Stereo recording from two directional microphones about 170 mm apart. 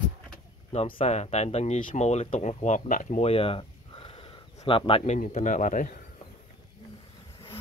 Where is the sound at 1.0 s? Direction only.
40° left (ahead or behind).